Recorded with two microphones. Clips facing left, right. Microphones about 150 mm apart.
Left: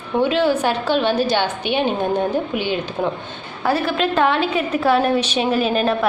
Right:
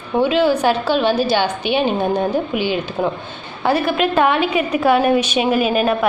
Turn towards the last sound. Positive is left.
turn(degrees=-10)  # may be behind; listen again after turning